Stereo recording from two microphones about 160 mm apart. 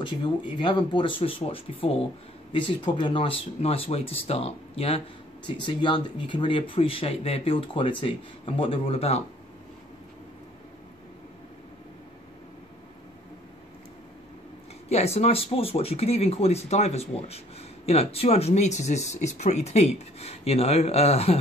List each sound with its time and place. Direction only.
0.0 s speech: 30° left (ahead or behind)
14.9 s speech: 40° left (ahead or behind)